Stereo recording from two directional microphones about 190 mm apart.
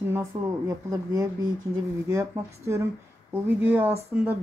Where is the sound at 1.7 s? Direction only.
15° right (ahead or behind).